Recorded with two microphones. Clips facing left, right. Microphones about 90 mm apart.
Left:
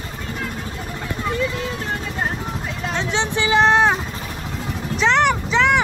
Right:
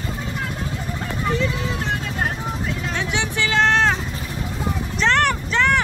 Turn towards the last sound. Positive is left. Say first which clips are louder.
# left 2 dB
turn(degrees=5)  # may be behind; listen again after turning